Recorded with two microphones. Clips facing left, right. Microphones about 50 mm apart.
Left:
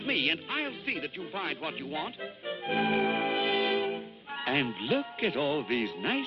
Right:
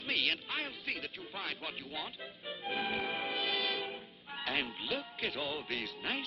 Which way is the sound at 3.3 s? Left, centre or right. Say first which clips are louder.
Left 7 dB; left.